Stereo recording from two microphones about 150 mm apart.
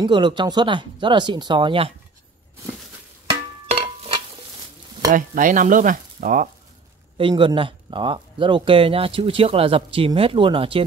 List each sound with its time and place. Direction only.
0.0 s speech: 30° right (ahead or behind)
3.3 s music: 40° right (ahead or behind)
5.1 s speech: 60° right (ahead or behind)
7.2 s speech: 35° right (ahead or behind)